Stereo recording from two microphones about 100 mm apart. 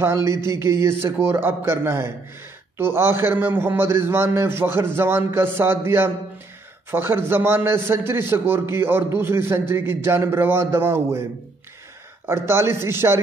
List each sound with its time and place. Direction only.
0.0 s a man's voice: 30° right (ahead or behind)
12.3 s a man's voice: 25° right (ahead or behind)